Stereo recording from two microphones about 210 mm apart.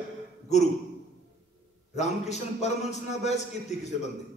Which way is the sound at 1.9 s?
35° left (ahead or behind).